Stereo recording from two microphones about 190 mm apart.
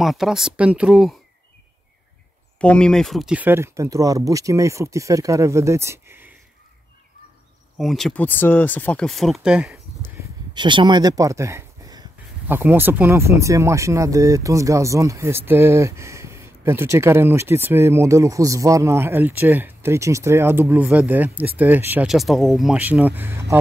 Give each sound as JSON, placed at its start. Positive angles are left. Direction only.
{"t": 0.0, "sound": "speech", "side_deg": 0}
{"t": 2.6, "sound": "speech", "side_deg": 5}
{"t": 7.7, "sound": "speech", "side_deg": 0}
{"t": 10.5, "sound": "speech", "side_deg": -25}